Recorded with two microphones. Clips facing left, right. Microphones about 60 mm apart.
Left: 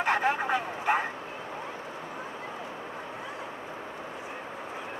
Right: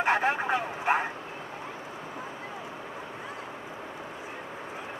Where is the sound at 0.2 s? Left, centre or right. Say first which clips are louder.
Even; right.